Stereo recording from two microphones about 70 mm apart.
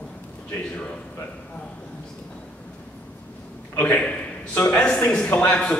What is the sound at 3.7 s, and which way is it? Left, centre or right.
A man's voice, left.